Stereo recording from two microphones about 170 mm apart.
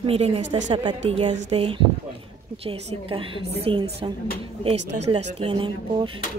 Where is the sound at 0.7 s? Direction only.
35° right (ahead or behind).